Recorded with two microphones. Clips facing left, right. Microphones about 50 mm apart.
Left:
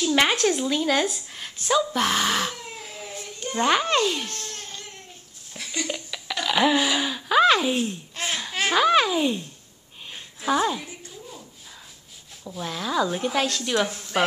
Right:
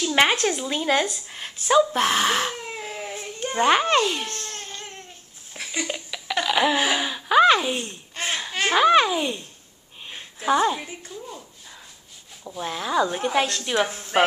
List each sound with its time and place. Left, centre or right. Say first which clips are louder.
0.0 s speech: right 1 dB; centre
0.7 s speech: left 1 dB; centre
0.9 s speech: right 1 dB; centre
1.7 s speech: right 3 dB; centre
2.5 s a sound: right 5 dB; right
5.5 s a sound: right 1 dB; centre
7.0 s babbling: right 2 dB; centre
8.7 s a child's voice: right 2 dB; centre
10.1 s a sound: right 2 dB; centre
12.4 s speech: right 1 dB; centre
13.7 s a woman's voice: right 4 dB; right